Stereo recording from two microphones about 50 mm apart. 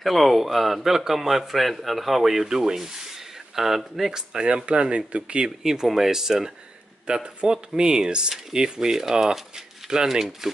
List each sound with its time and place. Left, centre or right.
0.0 s a man's voice: centre; by 5.5 s right
5.6 s speech: centre